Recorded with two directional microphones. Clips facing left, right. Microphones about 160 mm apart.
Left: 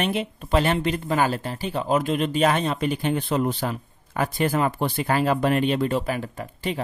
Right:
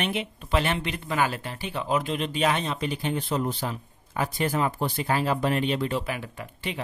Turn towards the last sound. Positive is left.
turn(degrees=40)  # may be behind; listen again after turning